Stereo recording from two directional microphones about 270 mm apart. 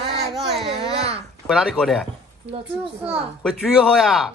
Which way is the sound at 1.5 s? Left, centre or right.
Centre.